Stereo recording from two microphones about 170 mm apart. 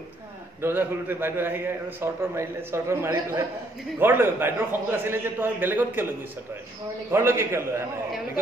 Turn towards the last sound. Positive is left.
turn(degrees=-15)  # may be behind; listen again after turning